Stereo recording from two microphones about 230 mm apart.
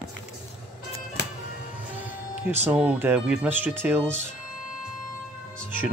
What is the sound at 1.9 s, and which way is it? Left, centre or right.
Music, centre.